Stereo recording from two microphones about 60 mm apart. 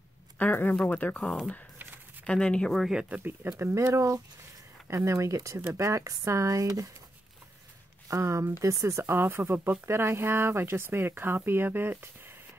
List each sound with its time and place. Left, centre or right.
0.4 s speech: left
2.9 s speech: centre
3.4 s speech: right
3.9 s speech: right
8.1 s speech: right
9.0 s speech: right